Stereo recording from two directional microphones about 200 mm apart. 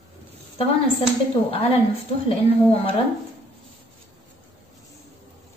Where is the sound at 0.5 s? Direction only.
30° left (ahead or behind).